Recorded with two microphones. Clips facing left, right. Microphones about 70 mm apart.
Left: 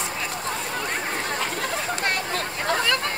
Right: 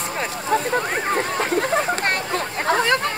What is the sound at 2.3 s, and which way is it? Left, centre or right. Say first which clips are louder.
Chatter: right 4 dB; right.